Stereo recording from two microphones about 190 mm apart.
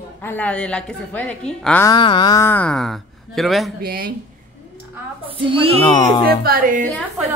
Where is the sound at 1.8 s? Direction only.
25° left (ahead or behind); by 3.7 s centre (ahead or behind).